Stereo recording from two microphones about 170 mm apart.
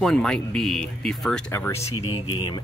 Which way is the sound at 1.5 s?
15° left (ahead or behind).